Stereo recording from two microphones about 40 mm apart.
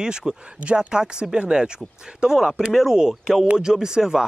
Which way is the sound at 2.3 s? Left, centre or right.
Centre.